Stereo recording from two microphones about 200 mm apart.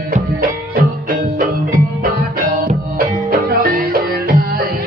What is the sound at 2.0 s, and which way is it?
Music, 50° right (ahead or behind).